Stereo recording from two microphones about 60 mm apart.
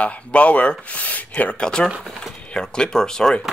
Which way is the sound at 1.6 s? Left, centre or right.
Centre.